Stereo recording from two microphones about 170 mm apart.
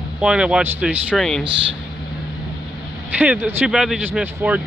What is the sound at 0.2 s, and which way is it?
Speech, 5° right (ahead or behind).